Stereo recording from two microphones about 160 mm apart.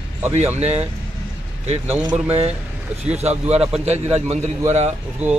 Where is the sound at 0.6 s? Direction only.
40° right (ahead or behind).